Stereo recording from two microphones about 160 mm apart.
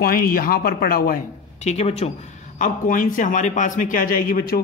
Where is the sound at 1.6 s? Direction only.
40° left (ahead or behind).